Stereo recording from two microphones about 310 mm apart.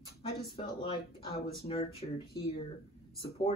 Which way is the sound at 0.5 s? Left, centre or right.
Centre.